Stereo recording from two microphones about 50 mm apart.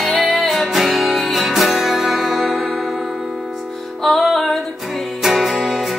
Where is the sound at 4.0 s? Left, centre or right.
Centre.